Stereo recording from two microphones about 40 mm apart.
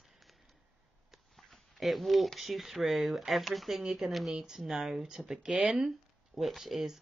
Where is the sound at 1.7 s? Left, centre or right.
Centre.